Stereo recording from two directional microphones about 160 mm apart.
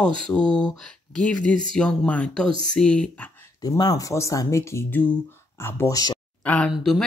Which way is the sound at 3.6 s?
25° left (ahead or behind).